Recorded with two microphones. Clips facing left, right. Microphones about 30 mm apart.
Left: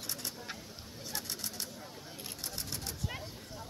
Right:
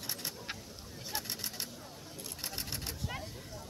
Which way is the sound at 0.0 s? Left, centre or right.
Centre.